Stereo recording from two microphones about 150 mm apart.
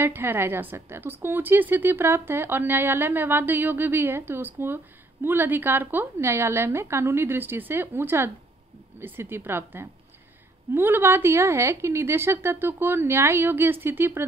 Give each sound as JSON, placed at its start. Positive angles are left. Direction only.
{"t": 0.0, "sound": "a woman's voice", "side_deg": -15}